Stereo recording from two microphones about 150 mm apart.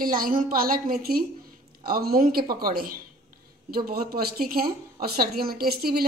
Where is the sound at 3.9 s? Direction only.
90° right.